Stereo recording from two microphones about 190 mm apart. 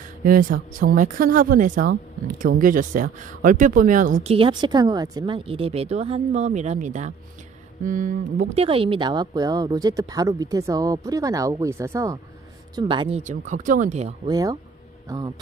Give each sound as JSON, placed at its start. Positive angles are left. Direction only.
{"t": 0.2, "sound": "a woman's voice", "side_deg": -45}
{"t": 7.8, "sound": "a sound", "side_deg": -45}
{"t": 8.5, "sound": "a woman's voice", "side_deg": -30}
{"t": 13.2, "sound": "a woman's voice", "side_deg": -40}
{"t": 14.2, "sound": "a woman's voice", "side_deg": -20}